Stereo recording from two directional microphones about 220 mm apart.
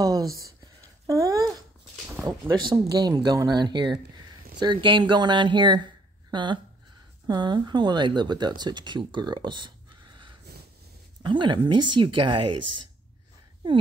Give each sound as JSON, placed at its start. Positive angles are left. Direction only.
{"t": 0.0, "sound": "a sound", "side_deg": -15}
{"t": 2.6, "sound": "speech", "side_deg": -20}
{"t": 11.2, "sound": "speech", "side_deg": -20}
{"t": 12.4, "sound": "speech", "side_deg": -90}